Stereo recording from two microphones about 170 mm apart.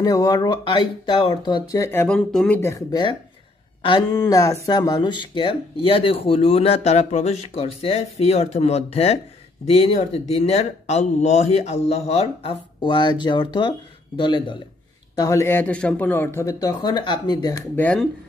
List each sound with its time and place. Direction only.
0.0 s speech: 20° left (ahead or behind)
15.1 s speech: 20° left (ahead or behind)
17.7 s speech: 10° left (ahead or behind)